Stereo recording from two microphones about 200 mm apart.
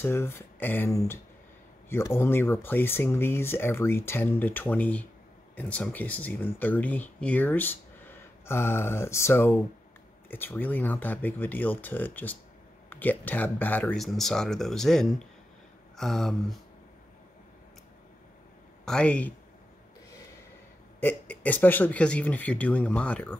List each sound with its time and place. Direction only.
0.0 s speech: 10° left (ahead or behind)
18.9 s speech: 5° left (ahead or behind)
21.0 s speech: 10° left (ahead or behind)